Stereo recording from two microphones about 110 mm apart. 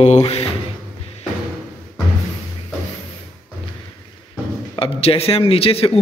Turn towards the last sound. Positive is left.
turn(degrees=60)  # may be behind; listen again after turning